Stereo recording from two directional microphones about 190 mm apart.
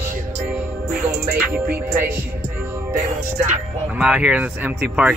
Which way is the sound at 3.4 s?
5° right (ahead or behind).